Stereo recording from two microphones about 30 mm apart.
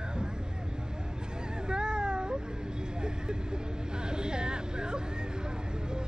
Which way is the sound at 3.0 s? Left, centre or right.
Right.